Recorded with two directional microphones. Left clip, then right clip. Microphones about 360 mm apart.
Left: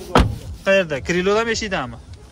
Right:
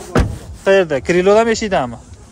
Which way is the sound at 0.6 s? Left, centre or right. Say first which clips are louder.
Right 5 dB; centre.